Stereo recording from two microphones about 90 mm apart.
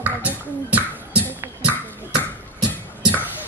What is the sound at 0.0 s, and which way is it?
Beatboxing, 15° right (ahead or behind).